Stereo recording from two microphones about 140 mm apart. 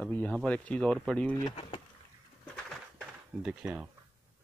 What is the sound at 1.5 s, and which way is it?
Speech, 40° left (ahead or behind).